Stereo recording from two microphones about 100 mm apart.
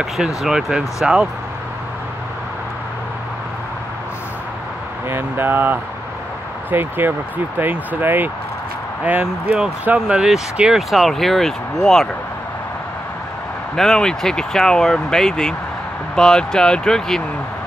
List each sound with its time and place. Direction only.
0.4 s speech: 5° right (ahead or behind)
5.1 s speech: 20° right (ahead or behind); by 12.1 s 5° left (ahead or behind)
13.7 s speech: 5° left (ahead or behind)